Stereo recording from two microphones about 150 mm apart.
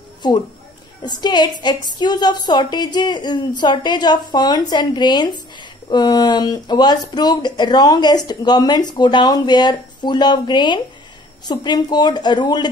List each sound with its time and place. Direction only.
0.2 s a woman's voice: 30° left (ahead or behind)